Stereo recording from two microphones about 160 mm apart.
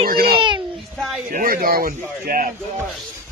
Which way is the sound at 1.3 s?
65° right (ahead or behind).